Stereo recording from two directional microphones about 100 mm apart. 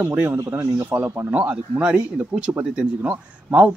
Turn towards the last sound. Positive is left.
turn(degrees=-15)  # may be behind; listen again after turning